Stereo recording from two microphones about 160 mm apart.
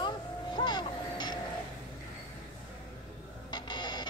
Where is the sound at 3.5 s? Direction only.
25° left (ahead or behind).